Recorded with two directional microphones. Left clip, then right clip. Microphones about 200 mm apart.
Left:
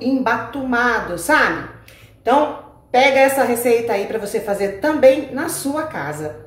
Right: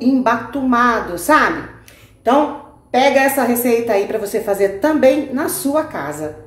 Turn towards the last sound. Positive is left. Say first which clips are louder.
# right 4 dB
turn(degrees=-35)  # may be behind; listen again after turning